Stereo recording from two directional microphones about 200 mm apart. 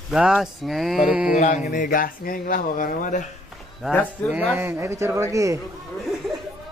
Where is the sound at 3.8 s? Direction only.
Centre (ahead or behind).